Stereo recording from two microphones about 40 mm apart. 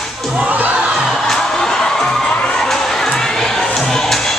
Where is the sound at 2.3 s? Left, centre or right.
Left.